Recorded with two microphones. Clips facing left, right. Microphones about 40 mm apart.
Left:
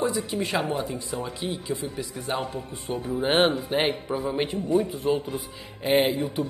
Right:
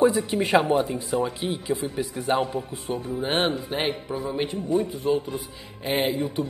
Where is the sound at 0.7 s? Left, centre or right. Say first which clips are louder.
Right 6 dB; centre.